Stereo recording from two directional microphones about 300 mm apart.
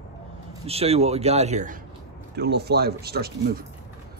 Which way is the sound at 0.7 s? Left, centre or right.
Centre.